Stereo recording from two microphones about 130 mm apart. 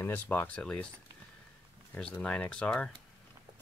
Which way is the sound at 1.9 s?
10° left (ahead or behind).